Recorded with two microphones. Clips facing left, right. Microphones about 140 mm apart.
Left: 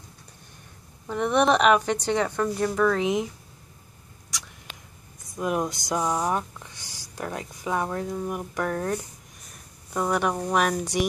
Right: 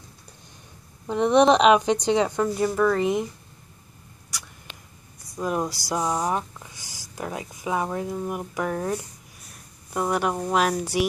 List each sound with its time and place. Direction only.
1.0 s a woman's voice: 20° right (ahead or behind); by 3.3 s centre (ahead or behind)
4.3 s rodents: 5° right (ahead or behind)
5.3 s speech: centre (ahead or behind)